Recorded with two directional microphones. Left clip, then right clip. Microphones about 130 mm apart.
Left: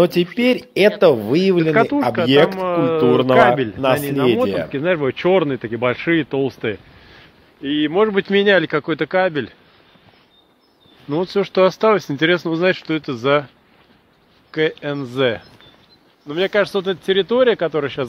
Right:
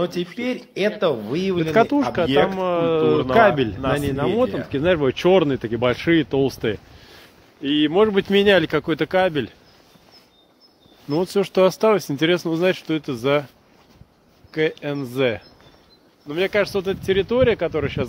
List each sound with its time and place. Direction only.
0.0 s speech: 50° left (ahead or behind)
1.7 s speech: 25° right (ahead or behind)
2.2 s speech: 40° left (ahead or behind)
2.5 s speech: 30° right (ahead or behind)
11.1 s speech: 15° right (ahead or behind); by 13.5 s centre (ahead or behind)
14.5 s speech: centre (ahead or behind)
16.3 s speech: 25° left (ahead or behind)